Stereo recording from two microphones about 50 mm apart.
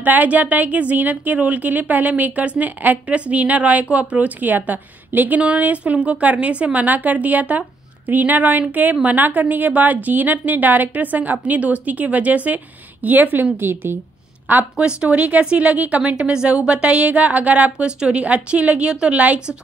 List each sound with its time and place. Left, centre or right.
0.0 s a woman's voice: right
5.4 s a woman's voice: right
14.8 s speech: right
17.8 s a woman's voice: centre
19.1 s speech: right